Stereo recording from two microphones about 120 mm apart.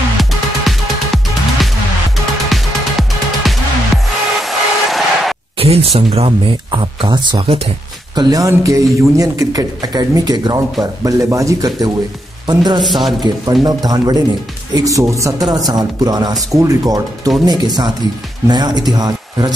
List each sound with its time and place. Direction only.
0.2 s music: centre (ahead or behind)
5.6 s speech: 55° right (ahead or behind); by 19.5 s 35° right (ahead or behind)